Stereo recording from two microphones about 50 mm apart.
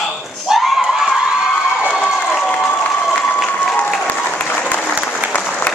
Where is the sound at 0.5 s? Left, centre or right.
Centre.